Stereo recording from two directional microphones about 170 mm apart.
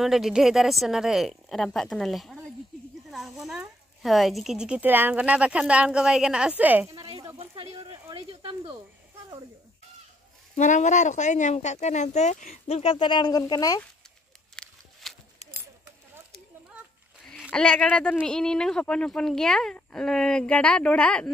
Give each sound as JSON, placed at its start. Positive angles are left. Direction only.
{"t": 0.0, "sound": "speech", "side_deg": 0}
{"t": 7.0, "sound": "a sound", "side_deg": -25}
{"t": 7.3, "sound": "snake", "side_deg": -35}
{"t": 10.5, "sound": "speech", "side_deg": 45}
{"t": 14.5, "sound": "a sound", "side_deg": 5}
{"t": 17.3, "sound": "speech", "side_deg": 5}